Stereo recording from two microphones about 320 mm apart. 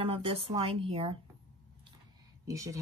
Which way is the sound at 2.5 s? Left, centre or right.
Centre.